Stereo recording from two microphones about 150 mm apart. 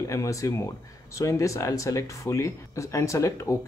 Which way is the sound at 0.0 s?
20° left (ahead or behind).